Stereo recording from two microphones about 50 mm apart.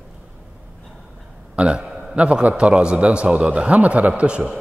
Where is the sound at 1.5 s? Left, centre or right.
Right.